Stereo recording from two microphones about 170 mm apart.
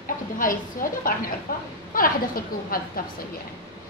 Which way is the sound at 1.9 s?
55° left (ahead or behind).